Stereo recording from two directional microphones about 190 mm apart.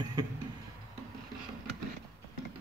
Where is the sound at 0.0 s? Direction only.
20° right (ahead or behind).